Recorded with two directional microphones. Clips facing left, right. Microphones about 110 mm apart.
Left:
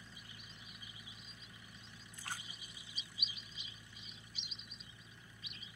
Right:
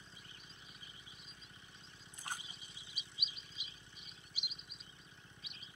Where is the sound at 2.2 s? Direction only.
20° right (ahead or behind).